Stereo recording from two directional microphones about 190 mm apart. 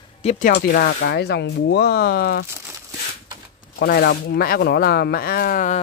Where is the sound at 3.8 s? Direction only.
50° left (ahead or behind).